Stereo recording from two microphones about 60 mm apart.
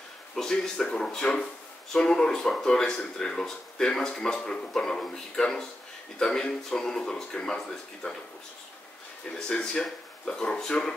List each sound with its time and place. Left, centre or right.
0.4 s speech: centre
9.3 s speech: centre